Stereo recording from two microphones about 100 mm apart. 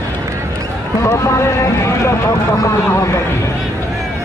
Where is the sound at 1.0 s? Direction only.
30° left (ahead or behind).